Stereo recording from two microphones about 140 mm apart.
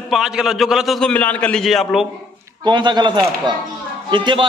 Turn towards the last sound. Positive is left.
turn(degrees=-35)  # may be behind; listen again after turning